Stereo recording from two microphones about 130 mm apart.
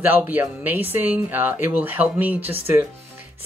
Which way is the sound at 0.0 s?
15° right (ahead or behind).